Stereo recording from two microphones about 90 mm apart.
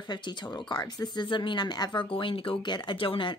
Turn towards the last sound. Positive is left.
turn(degrees=70)  # may be behind; listen again after turning